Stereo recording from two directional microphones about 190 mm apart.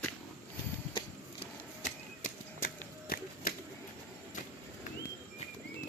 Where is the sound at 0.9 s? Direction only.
35° left (ahead or behind).